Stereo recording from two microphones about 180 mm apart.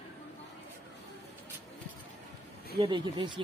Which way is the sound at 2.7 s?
25° right (ahead or behind).